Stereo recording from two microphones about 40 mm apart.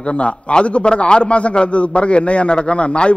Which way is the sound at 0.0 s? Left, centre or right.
Left.